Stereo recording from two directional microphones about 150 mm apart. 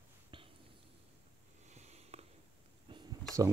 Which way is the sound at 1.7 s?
50° right (ahead or behind).